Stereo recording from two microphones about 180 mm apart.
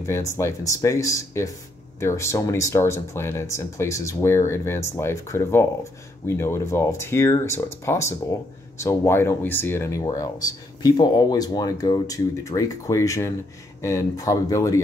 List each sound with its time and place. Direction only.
0.0 s speech: 15° left (ahead or behind)